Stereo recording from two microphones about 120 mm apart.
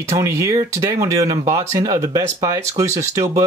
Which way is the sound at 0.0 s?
25° right (ahead or behind).